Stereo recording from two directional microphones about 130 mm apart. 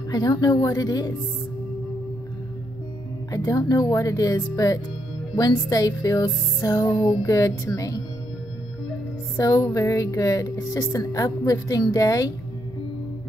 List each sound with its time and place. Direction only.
0.1 s speech: 30° left (ahead or behind)
3.3 s speech: 30° left (ahead or behind)
9.4 s speech: 25° left (ahead or behind)